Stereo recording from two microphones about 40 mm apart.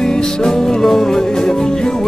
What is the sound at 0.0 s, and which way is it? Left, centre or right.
Music, centre.